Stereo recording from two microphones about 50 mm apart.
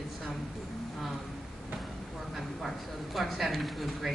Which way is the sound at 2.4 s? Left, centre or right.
Centre.